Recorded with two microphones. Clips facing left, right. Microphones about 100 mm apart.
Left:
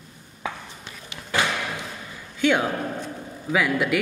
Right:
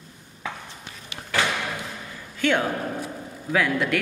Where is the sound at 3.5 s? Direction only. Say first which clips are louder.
Left 1 dB; 5° left (ahead or behind).